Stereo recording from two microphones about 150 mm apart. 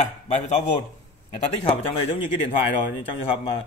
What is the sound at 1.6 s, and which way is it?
Speech, 40° left (ahead or behind).